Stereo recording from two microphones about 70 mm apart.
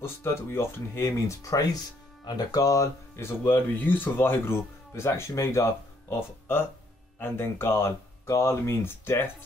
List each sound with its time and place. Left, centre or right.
0.0 s speech: left
2.2 s speech: left
3.2 s speech: left